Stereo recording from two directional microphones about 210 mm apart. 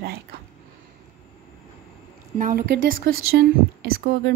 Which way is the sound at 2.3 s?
40° right (ahead or behind).